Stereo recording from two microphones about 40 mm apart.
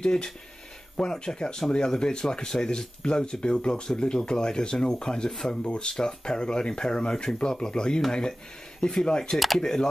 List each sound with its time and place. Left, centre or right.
0.0 s speech: centre